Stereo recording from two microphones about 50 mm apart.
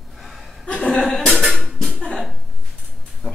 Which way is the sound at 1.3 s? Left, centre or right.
Centre.